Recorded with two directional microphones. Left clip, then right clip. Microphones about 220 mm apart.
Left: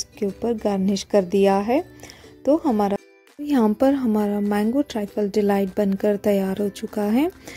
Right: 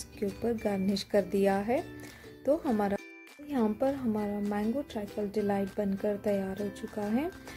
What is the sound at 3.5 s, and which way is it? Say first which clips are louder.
Speech: left 11 dB; 45° left (ahead or behind).